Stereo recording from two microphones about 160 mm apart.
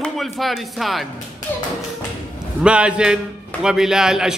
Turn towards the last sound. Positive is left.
turn(degrees=-5)  # may be behind; listen again after turning